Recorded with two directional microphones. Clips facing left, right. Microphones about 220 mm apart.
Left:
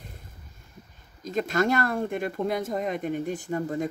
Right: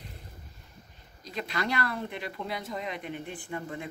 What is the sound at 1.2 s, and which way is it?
Speech, 45° left (ahead or behind).